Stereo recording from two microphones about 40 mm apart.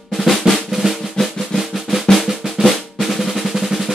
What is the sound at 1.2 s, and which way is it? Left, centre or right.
Drum roll, centre.